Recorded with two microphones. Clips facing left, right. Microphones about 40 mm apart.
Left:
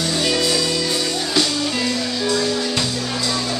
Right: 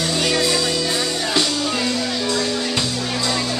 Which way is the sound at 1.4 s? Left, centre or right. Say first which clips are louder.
Even; centre.